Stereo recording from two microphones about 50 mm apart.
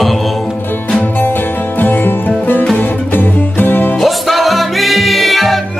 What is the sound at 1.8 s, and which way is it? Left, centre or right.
Music, left.